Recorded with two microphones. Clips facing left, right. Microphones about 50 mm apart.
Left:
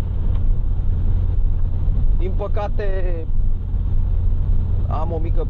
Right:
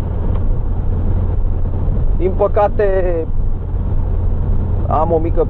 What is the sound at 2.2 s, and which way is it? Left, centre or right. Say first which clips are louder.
Speech: right 14 dB; right.